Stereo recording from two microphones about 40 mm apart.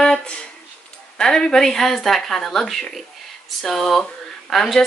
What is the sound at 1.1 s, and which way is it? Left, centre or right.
Speech, centre.